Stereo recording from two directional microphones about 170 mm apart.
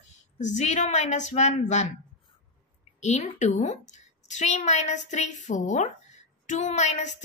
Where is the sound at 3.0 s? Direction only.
40° left (ahead or behind).